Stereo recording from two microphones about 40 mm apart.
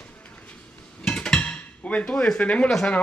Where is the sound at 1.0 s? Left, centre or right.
Left.